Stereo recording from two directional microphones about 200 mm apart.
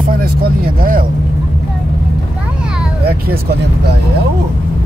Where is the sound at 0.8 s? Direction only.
45° right (ahead or behind).